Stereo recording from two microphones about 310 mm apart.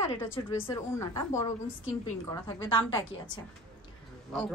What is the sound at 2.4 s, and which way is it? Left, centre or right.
Speech, centre.